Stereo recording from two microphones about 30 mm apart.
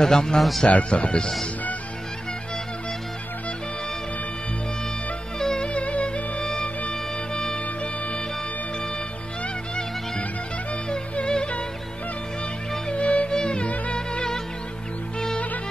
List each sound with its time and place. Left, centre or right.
0.0 s speech: centre
0.7 s speech: left
5.4 s music: left
5.7 s music: left
6.4 s music: centre
7.5 s music: left
11.3 s music: left
12.9 s music: left
13.9 s music: left